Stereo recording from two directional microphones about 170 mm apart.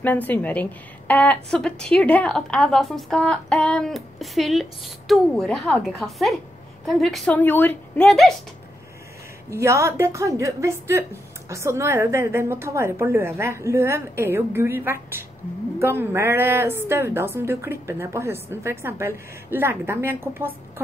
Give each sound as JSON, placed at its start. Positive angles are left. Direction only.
{"t": 0.0, "sound": "a woman's voice", "side_deg": 10}
{"t": 9.5, "sound": "a woman's voice", "side_deg": -15}